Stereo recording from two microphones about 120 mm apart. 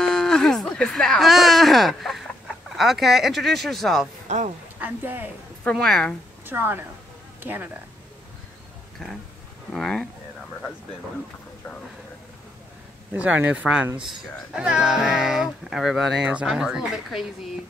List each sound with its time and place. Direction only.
0.0 s speech: 5° left (ahead or behind)
4.3 s speech: 80° right
4.7 s speech: 15° right (ahead or behind)
5.6 s speech: 5° left (ahead or behind)
6.4 s a woman's voice: 15° right (ahead or behind)
9.0 s speech: 5° left (ahead or behind)
13.1 s a man's voice: 15° right (ahead or behind)